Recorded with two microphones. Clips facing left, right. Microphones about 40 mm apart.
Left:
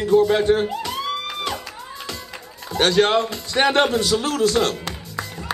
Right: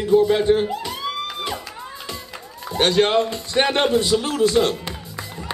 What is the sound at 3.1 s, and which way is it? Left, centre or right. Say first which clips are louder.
Speech: right 1 dB; right.